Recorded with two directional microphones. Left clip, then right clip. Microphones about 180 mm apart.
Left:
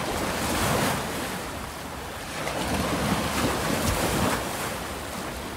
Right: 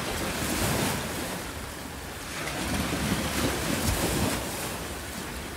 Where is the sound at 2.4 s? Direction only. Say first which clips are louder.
Left 3 dB; 60° left (ahead or behind).